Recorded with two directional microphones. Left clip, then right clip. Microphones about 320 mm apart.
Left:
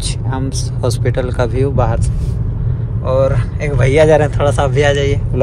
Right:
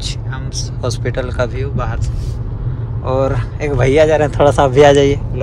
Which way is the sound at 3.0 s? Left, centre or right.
Centre.